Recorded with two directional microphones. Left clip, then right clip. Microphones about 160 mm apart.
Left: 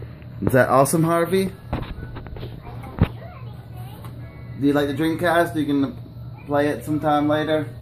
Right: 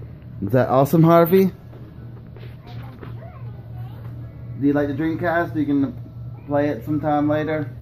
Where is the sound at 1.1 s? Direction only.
60° right (ahead or behind).